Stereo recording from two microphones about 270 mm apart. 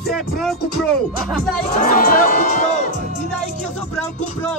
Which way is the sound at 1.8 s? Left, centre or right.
Left.